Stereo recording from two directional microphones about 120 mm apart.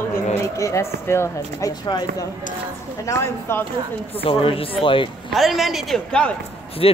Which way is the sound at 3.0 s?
20° left (ahead or behind).